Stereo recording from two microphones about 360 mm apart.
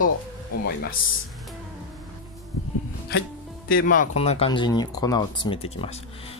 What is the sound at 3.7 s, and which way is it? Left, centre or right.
Speech, left.